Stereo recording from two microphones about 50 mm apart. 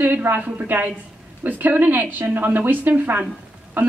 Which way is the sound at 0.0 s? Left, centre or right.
Right.